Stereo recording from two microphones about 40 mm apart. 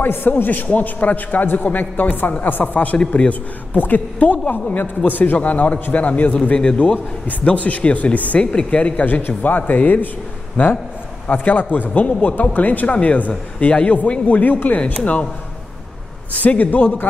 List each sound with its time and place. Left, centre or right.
0.0 s a man's voice: left
3.7 s a man's voice: left
5.4 s speech: left
8.5 s speech: left
9.0 s a man's voice: left
12.8 s speech: left
16.3 s a man's voice: left